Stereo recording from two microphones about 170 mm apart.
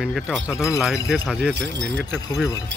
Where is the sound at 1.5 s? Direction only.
90° right.